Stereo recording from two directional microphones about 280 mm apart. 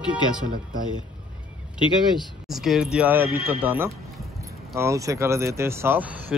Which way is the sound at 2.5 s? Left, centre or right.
Centre.